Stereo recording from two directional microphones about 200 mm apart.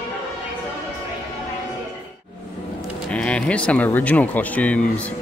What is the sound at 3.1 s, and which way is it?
Speech, 5° left (ahead or behind).